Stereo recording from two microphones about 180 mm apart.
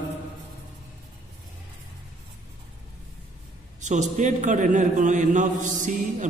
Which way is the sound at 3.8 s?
40° right (ahead or behind).